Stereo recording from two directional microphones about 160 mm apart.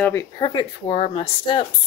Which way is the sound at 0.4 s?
30° left (ahead or behind).